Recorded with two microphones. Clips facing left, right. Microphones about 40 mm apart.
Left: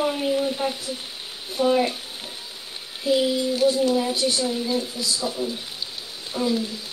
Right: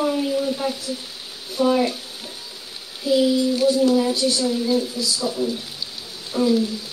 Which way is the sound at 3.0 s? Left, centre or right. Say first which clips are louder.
Right 3 dB; centre.